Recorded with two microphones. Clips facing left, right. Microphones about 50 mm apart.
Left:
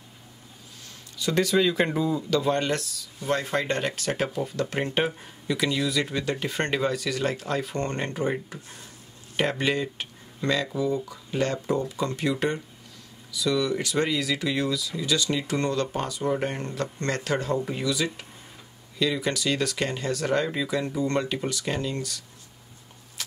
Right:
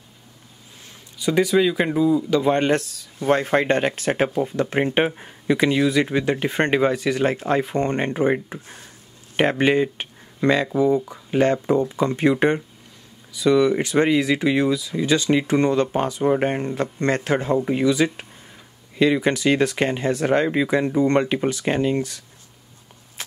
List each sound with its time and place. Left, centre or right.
1.1 s speech: centre
2.3 s speech: right